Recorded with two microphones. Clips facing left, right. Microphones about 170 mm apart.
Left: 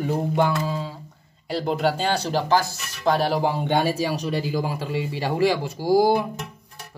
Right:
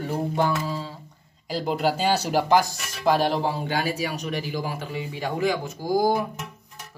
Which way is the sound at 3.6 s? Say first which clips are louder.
Left 4 dB; 30° left (ahead or behind).